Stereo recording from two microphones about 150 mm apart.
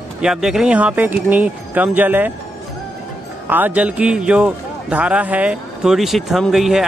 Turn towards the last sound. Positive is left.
turn(degrees=0)  # may be behind; listen again after turning